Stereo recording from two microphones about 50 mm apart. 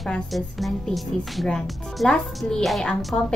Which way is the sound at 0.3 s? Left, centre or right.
Centre.